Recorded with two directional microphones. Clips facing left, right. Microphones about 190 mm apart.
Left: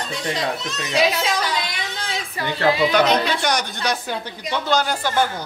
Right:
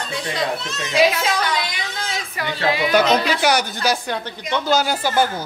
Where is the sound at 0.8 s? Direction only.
35° left (ahead or behind).